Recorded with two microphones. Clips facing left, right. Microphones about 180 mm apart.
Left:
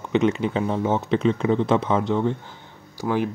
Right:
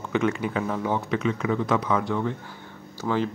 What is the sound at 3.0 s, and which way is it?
Speech, 15° left (ahead or behind).